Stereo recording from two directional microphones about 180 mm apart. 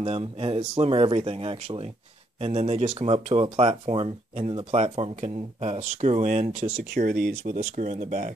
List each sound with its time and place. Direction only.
0.0 s speech: 30° right (ahead or behind)